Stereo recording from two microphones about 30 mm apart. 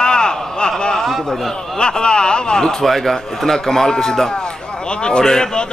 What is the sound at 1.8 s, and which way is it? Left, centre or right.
Speech, left.